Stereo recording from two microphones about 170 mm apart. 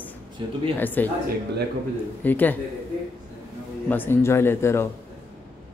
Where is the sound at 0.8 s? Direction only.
10° left (ahead or behind).